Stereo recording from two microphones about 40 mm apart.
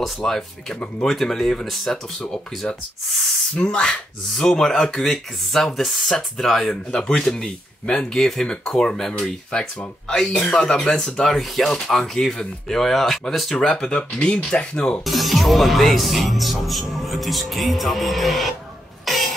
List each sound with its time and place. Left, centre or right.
0.2 s speech: centre
3.5 s speech: left
4.3 s speech: centre
6.9 s speech: centre
8.2 s speech: centre
13.9 s speech: left
15.0 s speech: centre
19.1 s rodents: centre